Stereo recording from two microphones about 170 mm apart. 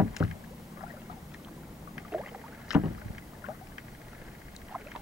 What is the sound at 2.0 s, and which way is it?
Rowboat, 5° right (ahead or behind).